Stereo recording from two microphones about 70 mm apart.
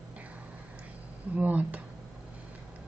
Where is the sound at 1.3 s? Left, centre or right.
Right.